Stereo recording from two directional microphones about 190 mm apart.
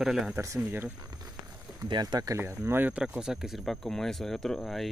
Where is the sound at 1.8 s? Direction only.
20° right (ahead or behind).